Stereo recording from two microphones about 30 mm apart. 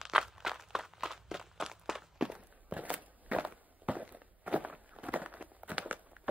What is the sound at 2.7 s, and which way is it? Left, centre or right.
Walk, right.